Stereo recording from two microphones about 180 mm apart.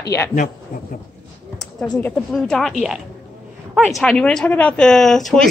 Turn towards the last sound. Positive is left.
turn(degrees=0)  # may be behind; listen again after turning